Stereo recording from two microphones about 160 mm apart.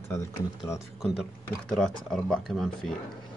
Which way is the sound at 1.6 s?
5° left (ahead or behind).